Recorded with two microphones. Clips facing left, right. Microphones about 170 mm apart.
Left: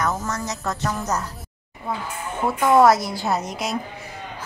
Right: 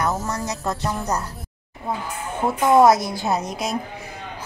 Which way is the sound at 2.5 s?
20° right (ahead or behind).